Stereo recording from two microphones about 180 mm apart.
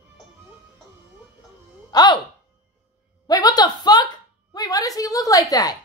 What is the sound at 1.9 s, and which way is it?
Music, 20° left (ahead or behind).